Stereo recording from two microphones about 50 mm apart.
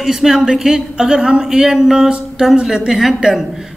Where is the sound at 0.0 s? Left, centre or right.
Centre.